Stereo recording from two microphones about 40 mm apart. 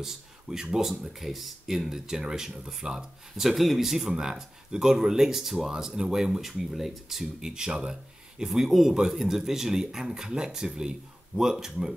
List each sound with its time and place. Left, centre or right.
0.0 s speech: centre
7.4 s speech: centre